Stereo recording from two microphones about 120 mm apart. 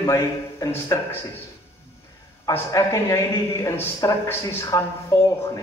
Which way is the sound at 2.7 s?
25° left (ahead or behind).